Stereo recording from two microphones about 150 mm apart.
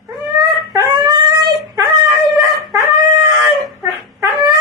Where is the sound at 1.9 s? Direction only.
Centre (ahead or behind).